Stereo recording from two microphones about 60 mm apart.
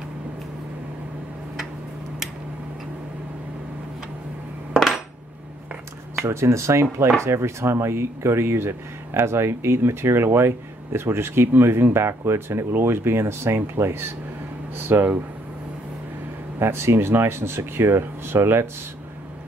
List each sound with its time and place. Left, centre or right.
4.7 s dishes: centre
6.2 s speech: right
16.5 s speech: right